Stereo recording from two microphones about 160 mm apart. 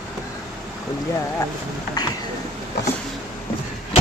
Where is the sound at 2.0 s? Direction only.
25° left (ahead or behind).